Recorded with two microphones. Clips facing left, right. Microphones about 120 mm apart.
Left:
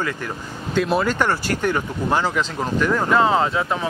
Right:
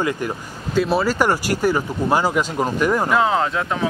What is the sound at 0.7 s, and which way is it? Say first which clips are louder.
Speech: right 1 dB; 5° right (ahead or behind).